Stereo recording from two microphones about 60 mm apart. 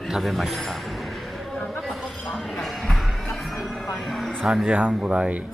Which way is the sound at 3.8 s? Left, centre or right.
Centre.